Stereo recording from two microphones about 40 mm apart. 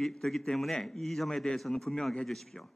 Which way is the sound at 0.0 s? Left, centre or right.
Centre.